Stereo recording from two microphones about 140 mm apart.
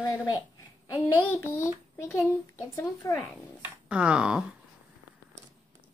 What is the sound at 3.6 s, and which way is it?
Speech, 10° right (ahead or behind).